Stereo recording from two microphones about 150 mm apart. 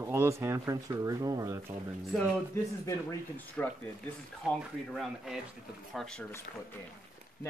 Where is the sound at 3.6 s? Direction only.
10° left (ahead or behind).